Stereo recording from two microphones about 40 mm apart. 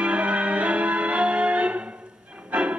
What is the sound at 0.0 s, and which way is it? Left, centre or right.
Music, right.